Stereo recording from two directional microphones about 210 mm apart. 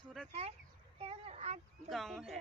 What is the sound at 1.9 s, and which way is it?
Speech, centre (ahead or behind).